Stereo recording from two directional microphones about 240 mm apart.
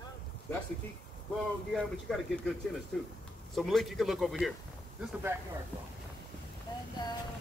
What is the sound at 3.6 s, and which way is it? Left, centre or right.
Speech, centre.